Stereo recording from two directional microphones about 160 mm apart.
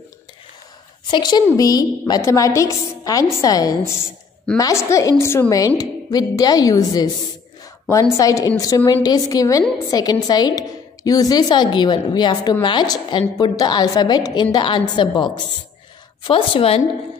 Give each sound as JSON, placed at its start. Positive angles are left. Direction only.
{"t": 1.1, "sound": "a woman's voice", "side_deg": 25}